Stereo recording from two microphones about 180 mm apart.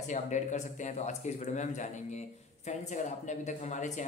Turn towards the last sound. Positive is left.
turn(degrees=40)  # may be behind; listen again after turning